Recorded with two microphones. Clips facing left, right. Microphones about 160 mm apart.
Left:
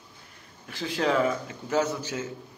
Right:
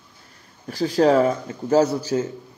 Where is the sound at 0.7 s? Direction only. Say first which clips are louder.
Right 9 dB; 40° right (ahead or behind).